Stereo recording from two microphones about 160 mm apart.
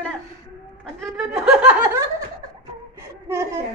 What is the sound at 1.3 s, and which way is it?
Snicker, 5° right (ahead or behind).